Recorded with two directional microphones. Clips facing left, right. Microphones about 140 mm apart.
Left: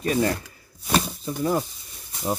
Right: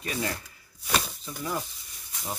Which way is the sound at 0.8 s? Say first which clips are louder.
Left 6 dB; 35° left (ahead or behind).